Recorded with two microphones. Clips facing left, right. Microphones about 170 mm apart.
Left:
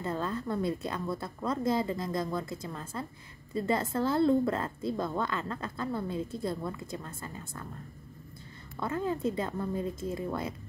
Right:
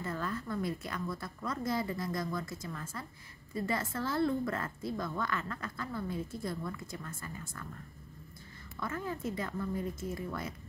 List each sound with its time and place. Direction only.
0.0 s a woman's voice: 25° left (ahead or behind)
8.7 s a woman's voice: 25° left (ahead or behind)